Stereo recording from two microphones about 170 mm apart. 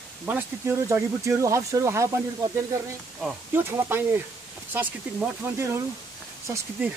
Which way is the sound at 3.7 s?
15° right (ahead or behind).